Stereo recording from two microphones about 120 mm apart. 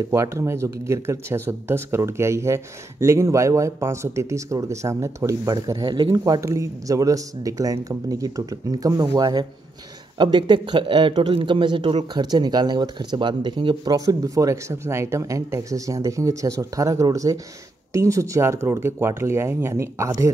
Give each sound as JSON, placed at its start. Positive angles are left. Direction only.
{"t": 0.1, "sound": "a man's voice", "side_deg": -25}
{"t": 13.9, "sound": "speech", "side_deg": -30}